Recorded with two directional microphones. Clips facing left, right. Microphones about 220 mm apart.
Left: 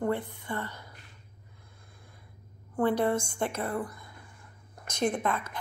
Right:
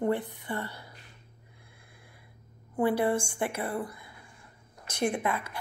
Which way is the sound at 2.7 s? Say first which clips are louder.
Even; 10° right (ahead or behind).